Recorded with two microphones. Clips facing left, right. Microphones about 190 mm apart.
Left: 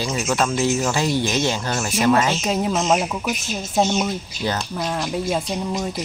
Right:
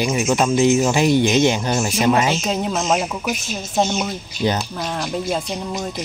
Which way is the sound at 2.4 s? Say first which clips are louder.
Even; centre (ahead or behind).